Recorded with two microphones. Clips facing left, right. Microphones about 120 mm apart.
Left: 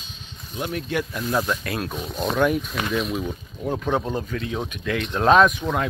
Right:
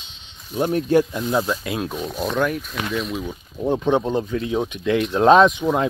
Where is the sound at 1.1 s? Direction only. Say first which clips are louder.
Right 2 dB; 20° right (ahead or behind).